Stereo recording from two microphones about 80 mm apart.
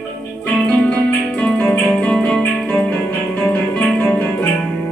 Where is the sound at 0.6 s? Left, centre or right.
Centre.